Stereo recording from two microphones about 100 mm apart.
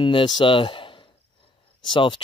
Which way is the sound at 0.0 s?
55° left (ahead or behind).